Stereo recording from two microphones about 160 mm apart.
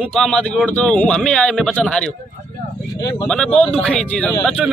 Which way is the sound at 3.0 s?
25° left (ahead or behind).